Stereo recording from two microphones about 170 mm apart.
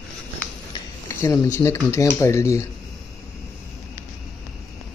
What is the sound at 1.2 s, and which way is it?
Speech, 15° left (ahead or behind).